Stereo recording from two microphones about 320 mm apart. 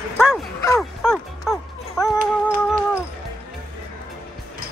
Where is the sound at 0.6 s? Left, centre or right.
Centre.